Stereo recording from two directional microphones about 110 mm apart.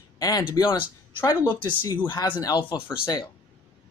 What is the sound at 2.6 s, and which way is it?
Speech, 50° left (ahead or behind).